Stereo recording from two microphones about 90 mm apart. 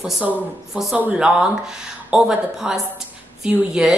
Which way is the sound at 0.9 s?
15° right (ahead or behind).